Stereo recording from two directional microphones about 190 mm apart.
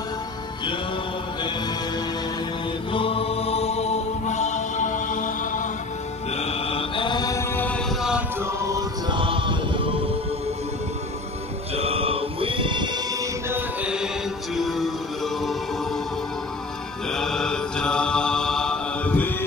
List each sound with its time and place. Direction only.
2.9 s chant: 30° left (ahead or behind)
6.3 s mantra: 30° left (ahead or behind); by 7.8 s 10° left (ahead or behind)
8.0 s chant: 5° right (ahead or behind)
8.5 s music: 15° right (ahead or behind)
11.7 s music: 30° right (ahead or behind); by 15.5 s centre (ahead or behind)
17.1 s mantra: 5° left (ahead or behind)